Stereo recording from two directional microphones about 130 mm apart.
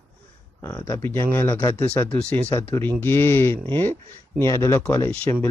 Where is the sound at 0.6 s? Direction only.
20° left (ahead or behind).